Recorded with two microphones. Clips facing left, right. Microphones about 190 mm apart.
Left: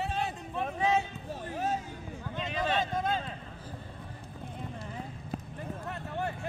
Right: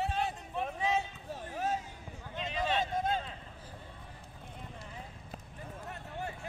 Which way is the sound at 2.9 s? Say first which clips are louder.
Left 1 dB; 90° left.